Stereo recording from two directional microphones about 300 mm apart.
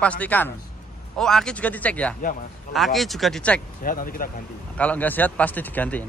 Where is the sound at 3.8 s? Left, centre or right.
Left.